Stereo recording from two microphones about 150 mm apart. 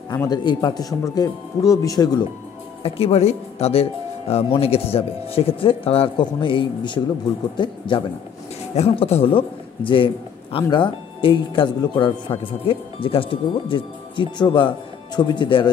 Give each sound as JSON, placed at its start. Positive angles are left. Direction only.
{"t": 0.1, "sound": "speech", "side_deg": 25}
{"t": 2.8, "sound": "a man's voice", "side_deg": 40}